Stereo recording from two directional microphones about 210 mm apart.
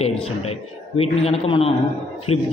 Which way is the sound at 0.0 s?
30° left (ahead or behind).